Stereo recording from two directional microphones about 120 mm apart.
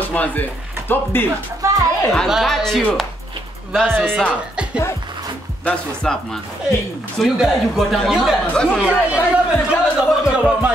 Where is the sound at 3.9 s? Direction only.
15° right (ahead or behind).